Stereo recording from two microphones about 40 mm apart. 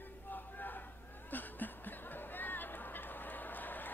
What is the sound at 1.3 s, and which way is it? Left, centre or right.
Music, left.